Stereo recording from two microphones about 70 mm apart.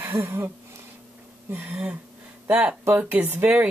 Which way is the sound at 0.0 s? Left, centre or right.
Right.